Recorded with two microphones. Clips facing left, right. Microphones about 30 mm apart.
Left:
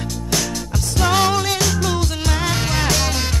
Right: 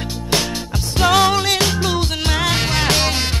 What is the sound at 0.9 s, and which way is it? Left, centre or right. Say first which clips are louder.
Music: right 3 dB; right.